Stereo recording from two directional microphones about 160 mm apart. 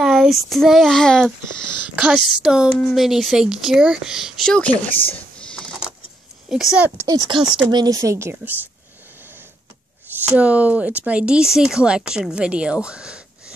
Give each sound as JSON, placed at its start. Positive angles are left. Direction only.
{"t": 0.0, "sound": "a child's voice", "side_deg": 0}
{"t": 7.0, "sound": "speech", "side_deg": -20}
{"t": 10.2, "sound": "speech", "side_deg": -10}